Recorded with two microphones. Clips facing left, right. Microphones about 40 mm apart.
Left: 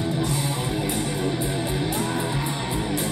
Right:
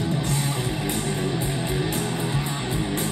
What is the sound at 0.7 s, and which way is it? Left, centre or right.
Music, right.